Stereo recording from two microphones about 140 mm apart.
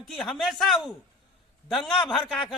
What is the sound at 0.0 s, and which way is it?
A man's voice, centre (ahead or behind).